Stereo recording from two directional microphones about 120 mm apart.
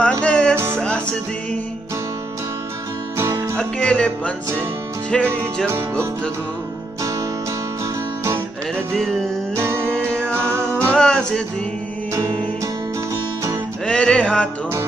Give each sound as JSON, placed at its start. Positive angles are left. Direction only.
{"t": 0.2, "sound": "music", "side_deg": 10}
{"t": 3.2, "sound": "music", "side_deg": -25}
{"t": 3.5, "sound": "music", "side_deg": 5}
{"t": 5.7, "sound": "music", "side_deg": -20}
{"t": 8.9, "sound": "music", "side_deg": 5}
{"t": 9.6, "sound": "music", "side_deg": -20}
{"t": 9.9, "sound": "music", "side_deg": 10}
{"t": 10.3, "sound": "music", "side_deg": -20}
{"t": 10.9, "sound": "music", "side_deg": 5}
{"t": 13.1, "sound": "music", "side_deg": -25}
{"t": 13.8, "sound": "music", "side_deg": 5}